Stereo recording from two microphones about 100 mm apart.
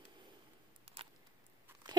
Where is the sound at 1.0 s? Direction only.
75° right (ahead or behind).